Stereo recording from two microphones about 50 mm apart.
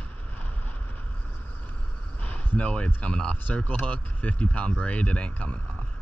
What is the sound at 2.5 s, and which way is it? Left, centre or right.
Speech, left.